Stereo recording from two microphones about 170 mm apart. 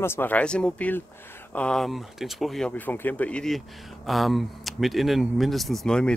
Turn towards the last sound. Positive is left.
turn(degrees=5)  # may be behind; listen again after turning